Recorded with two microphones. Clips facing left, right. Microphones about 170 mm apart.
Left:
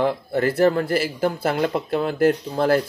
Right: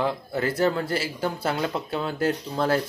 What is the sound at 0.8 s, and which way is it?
Speech, 55° left (ahead or behind).